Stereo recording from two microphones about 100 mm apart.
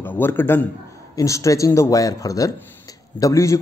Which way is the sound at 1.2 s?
30° left (ahead or behind).